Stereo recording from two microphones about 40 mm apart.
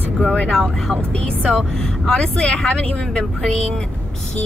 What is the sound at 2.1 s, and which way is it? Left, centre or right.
Speech, left.